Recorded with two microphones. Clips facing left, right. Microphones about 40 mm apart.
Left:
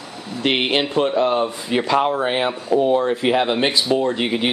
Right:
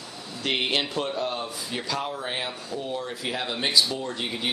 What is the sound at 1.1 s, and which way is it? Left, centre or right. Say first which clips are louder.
Speech: left 11 dB; left.